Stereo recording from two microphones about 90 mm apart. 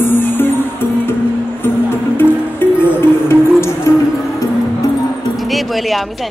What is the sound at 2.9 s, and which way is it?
Music, 30° left (ahead or behind).